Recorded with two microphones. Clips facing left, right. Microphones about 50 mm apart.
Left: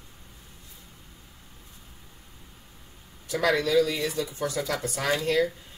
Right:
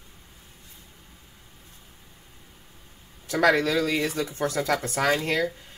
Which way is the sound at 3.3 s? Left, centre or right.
Right.